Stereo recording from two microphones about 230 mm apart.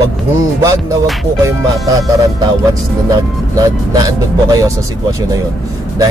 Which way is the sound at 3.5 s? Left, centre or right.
Centre.